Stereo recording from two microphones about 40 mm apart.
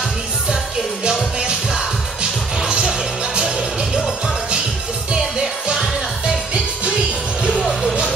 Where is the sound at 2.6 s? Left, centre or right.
Centre.